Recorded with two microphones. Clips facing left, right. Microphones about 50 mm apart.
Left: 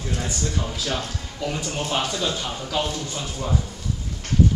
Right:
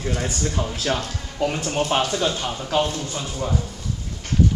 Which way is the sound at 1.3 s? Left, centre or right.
Right.